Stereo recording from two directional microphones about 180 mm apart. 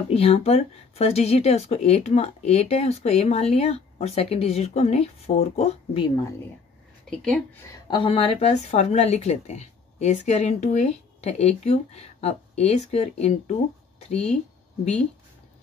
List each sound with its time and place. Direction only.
0.1 s speech: 35° left (ahead or behind)
7.1 s speech: 5° left (ahead or behind)
7.9 s speech: 30° left (ahead or behind)